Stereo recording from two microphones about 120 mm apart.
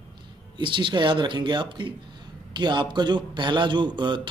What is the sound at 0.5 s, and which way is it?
Speech, 40° right (ahead or behind).